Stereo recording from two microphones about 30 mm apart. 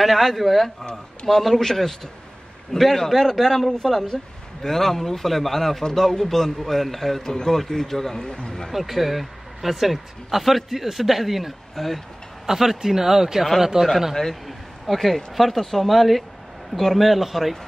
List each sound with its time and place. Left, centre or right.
0.0 s a man's voice: centre
8.3 s speech: left
8.7 s speech: centre
12.4 s speech: centre
15.0 s speech: centre